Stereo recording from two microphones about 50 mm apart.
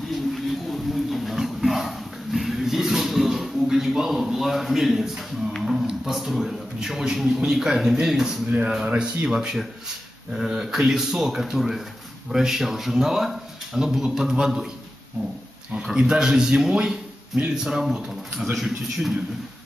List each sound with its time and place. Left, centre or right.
0.1 s a sound: centre
5.6 s a man's voice: centre
15.8 s a man's voice: centre